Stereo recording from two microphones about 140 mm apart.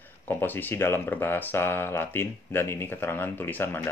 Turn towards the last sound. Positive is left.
turn(degrees=15)  # may be behind; listen again after turning